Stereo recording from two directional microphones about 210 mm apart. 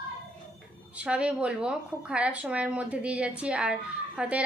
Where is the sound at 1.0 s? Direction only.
5° right (ahead or behind).